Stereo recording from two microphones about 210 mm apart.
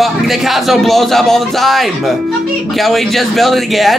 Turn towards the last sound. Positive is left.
turn(degrees=0)  # may be behind; listen again after turning